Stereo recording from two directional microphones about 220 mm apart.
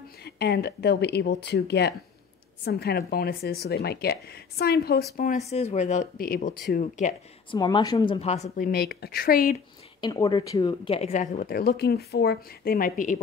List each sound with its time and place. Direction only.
0.2 s speech: 45° left (ahead or behind)
7.5 s a woman's voice: 15° left (ahead or behind)
8.5 s speech: 40° left (ahead or behind)
9.9 s speech: 15° left (ahead or behind)
11.0 s speech: 30° left (ahead or behind)